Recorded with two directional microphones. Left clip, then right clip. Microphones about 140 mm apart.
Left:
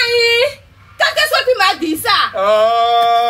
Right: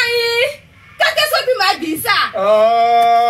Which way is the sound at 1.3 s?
50° left (ahead or behind).